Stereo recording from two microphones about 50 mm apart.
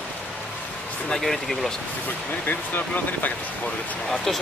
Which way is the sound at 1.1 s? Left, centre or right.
Centre.